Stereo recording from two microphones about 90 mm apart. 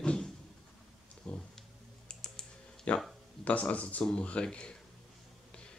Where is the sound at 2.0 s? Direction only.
10° left (ahead or behind).